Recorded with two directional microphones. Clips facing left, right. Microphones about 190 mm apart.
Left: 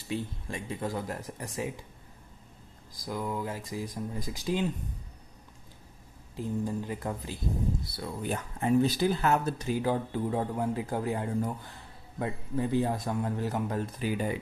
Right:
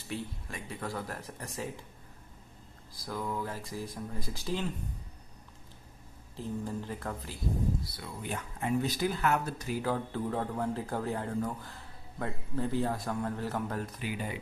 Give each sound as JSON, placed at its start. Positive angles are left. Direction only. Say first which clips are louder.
{"t": 0.1, "sound": "speech", "louder": "left 4 dB", "side_deg": 25}
{"t": 3.0, "sound": "speech", "louder": "left 2 dB", "side_deg": 15}
{"t": 6.3, "sound": "speech", "louder": "left 4 dB", "side_deg": 15}
{"t": 8.0, "sound": "speech", "louder": "left 5 dB", "side_deg": 35}